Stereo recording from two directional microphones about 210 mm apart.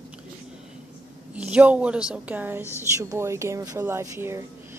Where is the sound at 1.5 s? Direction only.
5° right (ahead or behind).